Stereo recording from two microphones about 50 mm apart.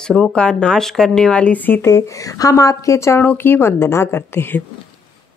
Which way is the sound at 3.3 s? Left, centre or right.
Left.